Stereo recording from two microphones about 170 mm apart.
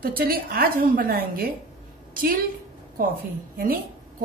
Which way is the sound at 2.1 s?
60° right (ahead or behind).